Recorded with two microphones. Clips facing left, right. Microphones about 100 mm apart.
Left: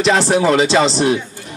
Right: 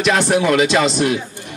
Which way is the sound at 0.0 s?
30° left (ahead or behind).